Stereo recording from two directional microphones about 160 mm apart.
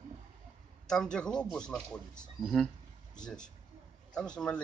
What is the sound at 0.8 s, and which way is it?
Speech, 5° left (ahead or behind).